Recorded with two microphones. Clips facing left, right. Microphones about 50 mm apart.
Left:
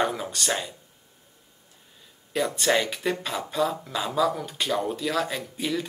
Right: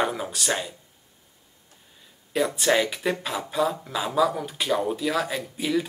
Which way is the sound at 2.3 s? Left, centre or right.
Centre.